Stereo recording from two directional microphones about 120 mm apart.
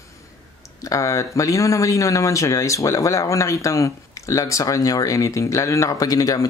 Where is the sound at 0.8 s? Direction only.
25° left (ahead or behind).